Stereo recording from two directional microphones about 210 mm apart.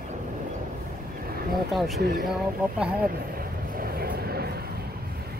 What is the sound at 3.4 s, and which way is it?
Vehicle, 45° right (ahead or behind).